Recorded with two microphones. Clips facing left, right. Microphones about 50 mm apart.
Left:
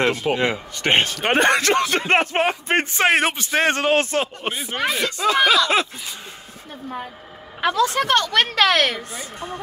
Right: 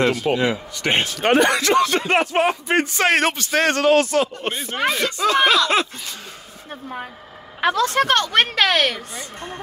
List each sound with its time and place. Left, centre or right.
0.0 s speech: left
0.4 s speech: left
3.1 s speech: centre
4.4 s speech: centre
7.6 s a woman's voice: right
8.5 s speech: centre